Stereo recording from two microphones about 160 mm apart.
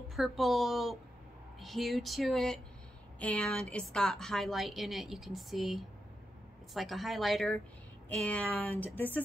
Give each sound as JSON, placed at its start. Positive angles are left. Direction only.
{"t": 0.1, "sound": "a woman's voice", "side_deg": 0}